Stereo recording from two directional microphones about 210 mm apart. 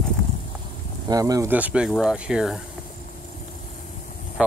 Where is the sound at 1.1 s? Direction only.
15° right (ahead or behind).